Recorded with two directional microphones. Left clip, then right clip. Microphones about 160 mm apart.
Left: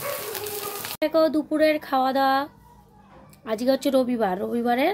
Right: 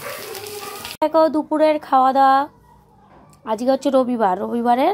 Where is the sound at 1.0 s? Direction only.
10° left (ahead or behind).